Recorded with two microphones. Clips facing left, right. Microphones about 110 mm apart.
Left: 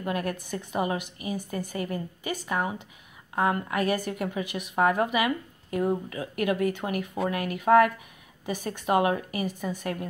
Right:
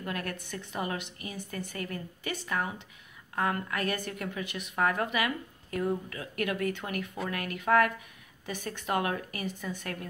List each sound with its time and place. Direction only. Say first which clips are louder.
0.0 s a woman's voice: left 6 dB; 15° left (ahead or behind)